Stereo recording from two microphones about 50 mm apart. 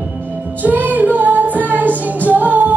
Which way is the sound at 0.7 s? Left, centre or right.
Right.